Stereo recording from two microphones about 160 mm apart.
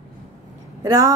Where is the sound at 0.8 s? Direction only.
20° right (ahead or behind).